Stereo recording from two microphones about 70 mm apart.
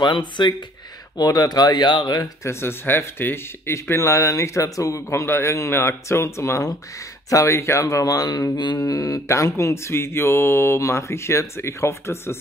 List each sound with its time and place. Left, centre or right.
0.0 s speech: left
1.1 s speech: left
2.4 s speech: left
5.2 s speech: left